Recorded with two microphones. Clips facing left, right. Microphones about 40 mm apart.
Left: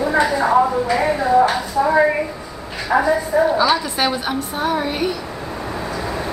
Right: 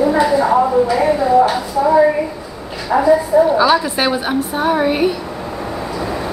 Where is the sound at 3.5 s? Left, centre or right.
Centre.